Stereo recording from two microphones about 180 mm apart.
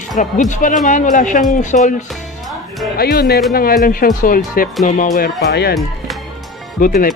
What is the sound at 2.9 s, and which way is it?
A woman's voice, 60° left (ahead or behind).